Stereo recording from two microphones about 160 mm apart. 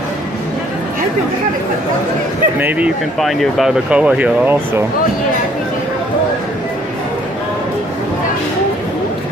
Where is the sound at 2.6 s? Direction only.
10° right (ahead or behind).